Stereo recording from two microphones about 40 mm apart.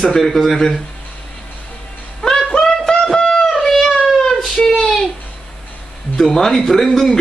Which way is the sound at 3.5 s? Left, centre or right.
Centre.